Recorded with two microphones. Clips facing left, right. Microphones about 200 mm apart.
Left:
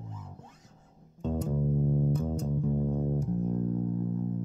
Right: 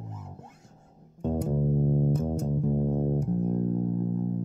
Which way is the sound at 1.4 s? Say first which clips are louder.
Right 2 dB; 35° right (ahead or behind).